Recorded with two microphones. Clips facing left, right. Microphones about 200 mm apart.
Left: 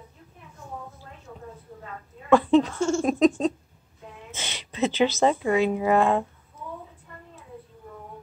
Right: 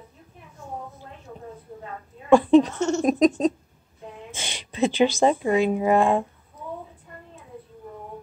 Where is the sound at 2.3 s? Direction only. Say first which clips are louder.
Right 3 dB; 15° right (ahead or behind).